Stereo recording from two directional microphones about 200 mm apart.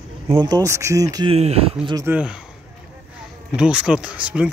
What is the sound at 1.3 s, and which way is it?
Speech, 30° right (ahead or behind).